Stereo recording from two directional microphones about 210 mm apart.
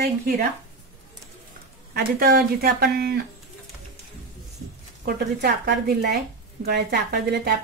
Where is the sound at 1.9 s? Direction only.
45° right (ahead or behind).